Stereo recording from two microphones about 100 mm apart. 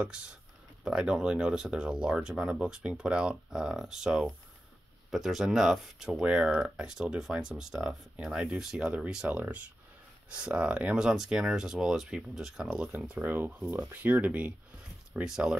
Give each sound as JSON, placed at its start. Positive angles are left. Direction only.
{"t": 0.0, "sound": "speech", "side_deg": -10}